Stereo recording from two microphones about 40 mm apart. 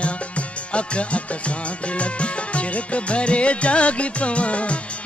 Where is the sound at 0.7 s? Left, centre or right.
Left.